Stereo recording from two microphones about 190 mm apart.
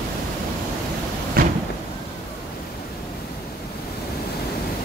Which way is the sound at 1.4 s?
50° right (ahead or behind).